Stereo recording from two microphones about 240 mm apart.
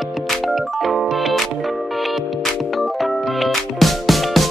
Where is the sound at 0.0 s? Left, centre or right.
Centre.